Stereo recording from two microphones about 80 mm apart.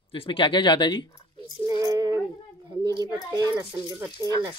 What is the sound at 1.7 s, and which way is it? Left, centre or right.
Child singing, right.